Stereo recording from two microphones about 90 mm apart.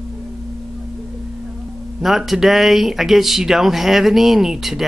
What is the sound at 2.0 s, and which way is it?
Speech, centre (ahead or behind).